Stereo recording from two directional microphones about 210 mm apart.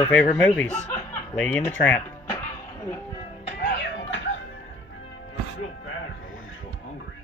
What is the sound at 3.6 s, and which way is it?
Music, 50° left (ahead or behind).